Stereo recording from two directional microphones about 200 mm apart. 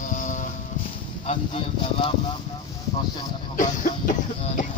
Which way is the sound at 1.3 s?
30° left (ahead or behind).